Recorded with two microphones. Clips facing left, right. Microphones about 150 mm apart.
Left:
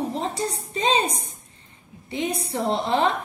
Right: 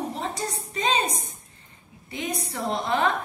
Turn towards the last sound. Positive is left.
turn(degrees=30)  # may be behind; listen again after turning